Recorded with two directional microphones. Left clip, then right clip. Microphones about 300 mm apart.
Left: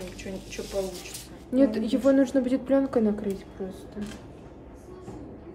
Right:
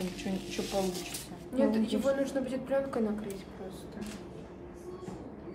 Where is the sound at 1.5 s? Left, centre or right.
Left.